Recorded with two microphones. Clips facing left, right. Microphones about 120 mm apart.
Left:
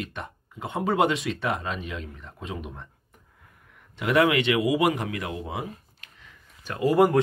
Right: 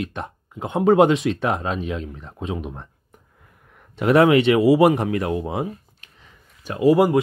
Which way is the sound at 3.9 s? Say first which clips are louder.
Right 7 dB; 35° right (ahead or behind).